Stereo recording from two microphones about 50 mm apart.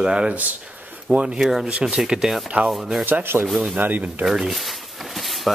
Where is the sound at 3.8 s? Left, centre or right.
Right.